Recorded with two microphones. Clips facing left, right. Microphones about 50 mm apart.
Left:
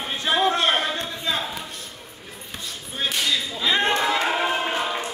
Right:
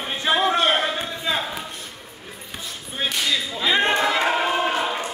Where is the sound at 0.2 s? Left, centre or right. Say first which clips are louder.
Right 1 dB; centre.